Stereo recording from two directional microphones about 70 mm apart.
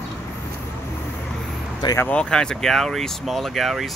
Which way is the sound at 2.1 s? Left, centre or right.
Centre.